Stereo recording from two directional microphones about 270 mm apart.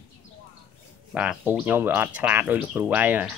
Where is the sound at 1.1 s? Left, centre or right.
Centre.